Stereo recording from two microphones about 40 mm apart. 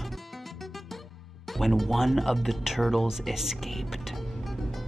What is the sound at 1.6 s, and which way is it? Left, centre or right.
Speech, centre.